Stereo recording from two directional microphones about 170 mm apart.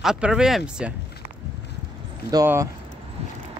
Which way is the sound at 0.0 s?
5° right (ahead or behind).